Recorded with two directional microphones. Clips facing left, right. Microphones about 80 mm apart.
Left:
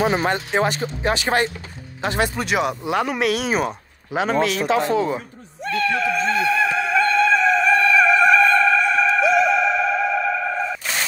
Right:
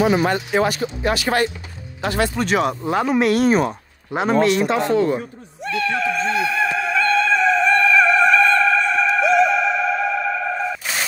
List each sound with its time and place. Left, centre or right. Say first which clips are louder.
0.0 s speech: right 2 dB; left
2.3 s speech: right 2 dB; centre
5.9 s music: even; centre